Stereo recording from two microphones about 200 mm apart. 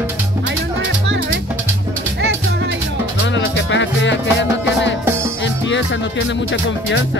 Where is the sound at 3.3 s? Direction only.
60° left (ahead or behind).